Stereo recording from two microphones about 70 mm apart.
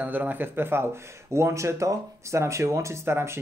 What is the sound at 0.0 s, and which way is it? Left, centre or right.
Speech, right.